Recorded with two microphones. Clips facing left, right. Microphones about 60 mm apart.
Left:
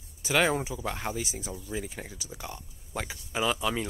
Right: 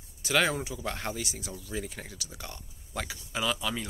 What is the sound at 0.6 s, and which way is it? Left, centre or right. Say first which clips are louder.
Speech: left 2 dB; left.